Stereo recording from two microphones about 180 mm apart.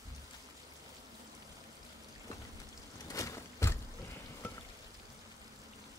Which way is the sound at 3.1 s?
15° left (ahead or behind).